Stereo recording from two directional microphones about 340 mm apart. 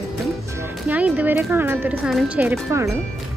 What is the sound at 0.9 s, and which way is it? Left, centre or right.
Speech, centre.